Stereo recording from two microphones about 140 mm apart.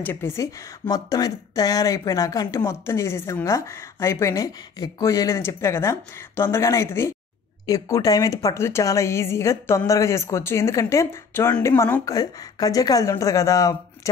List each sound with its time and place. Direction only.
0.0 s speech: 15° left (ahead or behind)